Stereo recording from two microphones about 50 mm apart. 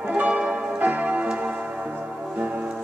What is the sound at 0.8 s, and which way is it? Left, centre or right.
Tick-tock, right.